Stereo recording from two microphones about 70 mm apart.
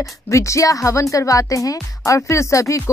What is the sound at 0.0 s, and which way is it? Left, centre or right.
Speech, left.